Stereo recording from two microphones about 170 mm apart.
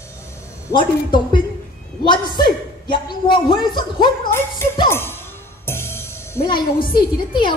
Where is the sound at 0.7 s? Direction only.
25° left (ahead or behind).